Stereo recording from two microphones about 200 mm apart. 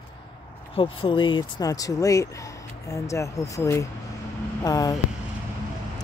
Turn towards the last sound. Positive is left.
turn(degrees=20)  # may be behind; listen again after turning